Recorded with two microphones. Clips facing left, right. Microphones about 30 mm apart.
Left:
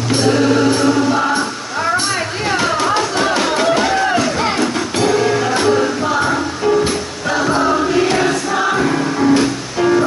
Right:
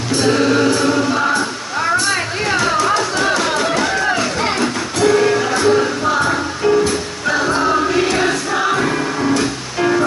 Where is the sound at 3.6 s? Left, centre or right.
Centre.